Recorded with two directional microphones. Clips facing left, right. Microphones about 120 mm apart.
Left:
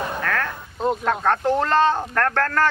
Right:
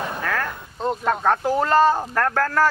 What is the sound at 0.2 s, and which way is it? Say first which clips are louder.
Speech: even; 5° right (ahead or behind).